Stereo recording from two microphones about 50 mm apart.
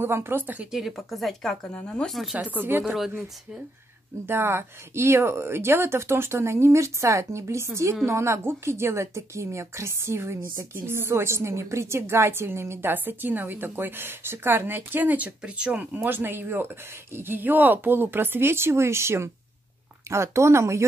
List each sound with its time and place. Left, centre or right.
0.0 s speech: right
0.7 s speech: centre
2.3 s speech: right
4.3 s a woman's voice: right
12.9 s speech: right
15.9 s a woman's voice: right